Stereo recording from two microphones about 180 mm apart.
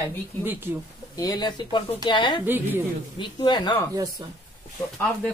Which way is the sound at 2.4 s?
10° right (ahead or behind).